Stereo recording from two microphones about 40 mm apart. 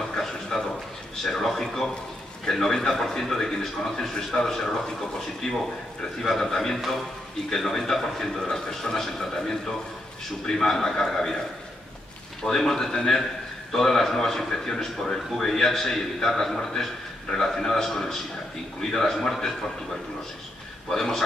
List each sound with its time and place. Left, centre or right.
0.2 s a sound: centre
1.2 s a man's voice: centre
6.8 s a man's voice: centre
7.4 s a man's voice: centre
12.4 s a man's voice: centre
20.9 s a man's voice: centre